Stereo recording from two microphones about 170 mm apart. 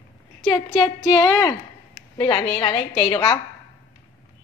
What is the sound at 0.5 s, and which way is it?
A woman's voice, 25° left (ahead or behind).